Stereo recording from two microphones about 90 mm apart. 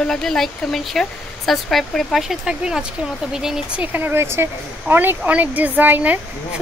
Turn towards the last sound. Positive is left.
turn(degrees=-20)  # may be behind; listen again after turning